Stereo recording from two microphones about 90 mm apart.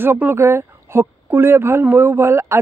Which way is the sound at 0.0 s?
25° right (ahead or behind).